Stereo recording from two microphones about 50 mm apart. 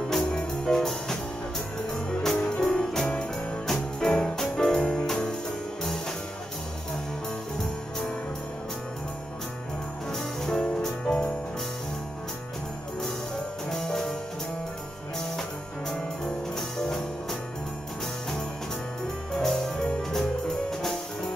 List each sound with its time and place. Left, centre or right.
0.1 s music: centre
10.1 s music: centre
13.7 s music: centre
16.5 s music: centre
19.3 s music: centre